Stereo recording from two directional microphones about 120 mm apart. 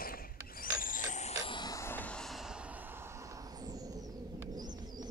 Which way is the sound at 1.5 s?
35° left (ahead or behind).